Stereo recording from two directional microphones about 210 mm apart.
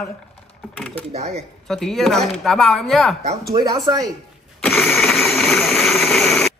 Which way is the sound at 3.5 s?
20° right (ahead or behind).